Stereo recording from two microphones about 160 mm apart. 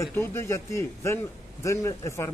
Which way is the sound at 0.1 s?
15° left (ahead or behind).